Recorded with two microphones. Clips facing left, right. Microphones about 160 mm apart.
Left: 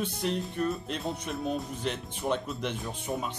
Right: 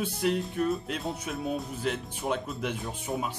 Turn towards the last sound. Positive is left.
turn(degrees=-5)  # may be behind; listen again after turning